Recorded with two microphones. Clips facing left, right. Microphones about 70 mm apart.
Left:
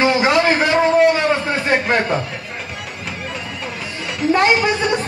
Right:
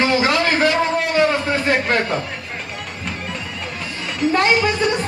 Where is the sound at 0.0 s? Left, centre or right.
Centre.